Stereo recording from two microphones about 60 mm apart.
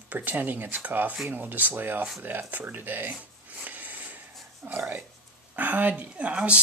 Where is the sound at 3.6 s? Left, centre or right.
Right.